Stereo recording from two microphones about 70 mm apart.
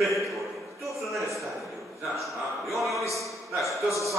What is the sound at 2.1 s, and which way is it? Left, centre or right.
Speech, centre.